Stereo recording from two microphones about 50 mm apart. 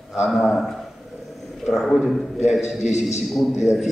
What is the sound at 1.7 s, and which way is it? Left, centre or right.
Speech, centre.